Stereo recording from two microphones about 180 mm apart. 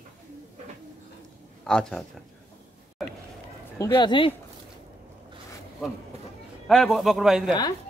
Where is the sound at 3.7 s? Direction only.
20° left (ahead or behind).